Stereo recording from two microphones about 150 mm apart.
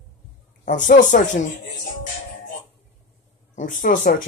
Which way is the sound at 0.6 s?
60° left (ahead or behind).